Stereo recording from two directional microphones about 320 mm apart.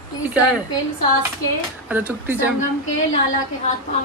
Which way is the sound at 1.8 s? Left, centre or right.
Centre.